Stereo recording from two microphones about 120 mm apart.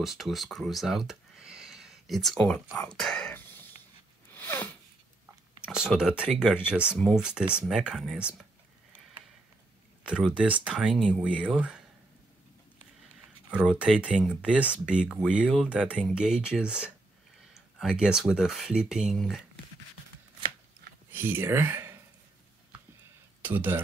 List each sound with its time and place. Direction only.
0.0 s speech: centre (ahead or behind)
4.3 s snort: 15° left (ahead or behind)
5.7 s speech: 5° right (ahead or behind)
10.0 s speech: 10° right (ahead or behind)
10.9 s speech: 5° left (ahead or behind)
13.7 s speech: 10° right (ahead or behind)
21.1 s speech: 15° right (ahead or behind)
23.4 s speech: 15° right (ahead or behind)